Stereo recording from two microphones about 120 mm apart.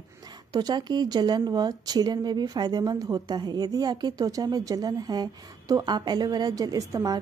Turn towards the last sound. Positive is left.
turn(degrees=-30)  # may be behind; listen again after turning